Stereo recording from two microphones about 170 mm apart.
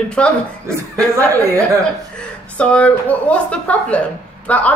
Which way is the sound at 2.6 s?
5° left (ahead or behind).